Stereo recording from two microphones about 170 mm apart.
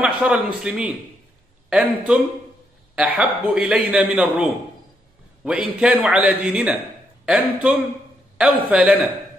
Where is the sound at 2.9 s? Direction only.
5° right (ahead or behind).